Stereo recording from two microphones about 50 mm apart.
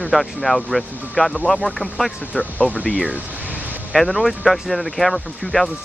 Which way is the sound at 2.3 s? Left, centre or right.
Left.